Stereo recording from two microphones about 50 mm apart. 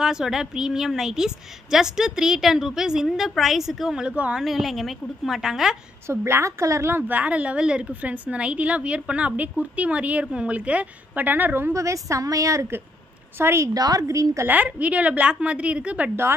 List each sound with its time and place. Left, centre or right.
0.0 s a woman's voice: centre
4.0 s a woman's voice: right
4.4 s a woman's voice: centre
6.0 s a woman's voice: right
7.1 s a woman's voice: right
11.7 s a woman's voice: right
13.4 s a woman's voice: right
14.5 s a woman's voice: right